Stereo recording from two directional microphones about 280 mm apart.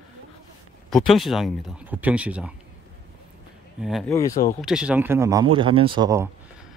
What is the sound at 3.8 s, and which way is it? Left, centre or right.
Speech, centre.